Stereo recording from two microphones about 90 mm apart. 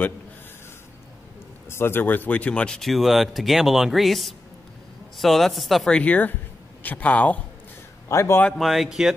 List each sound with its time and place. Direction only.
1.7 s speech: 25° left (ahead or behind); by 5.9 s centre (ahead or behind)
5.9 s a man's voice: 15° left (ahead or behind)
8.1 s speech: 35° left (ahead or behind)
8.5 s speech: centre (ahead or behind)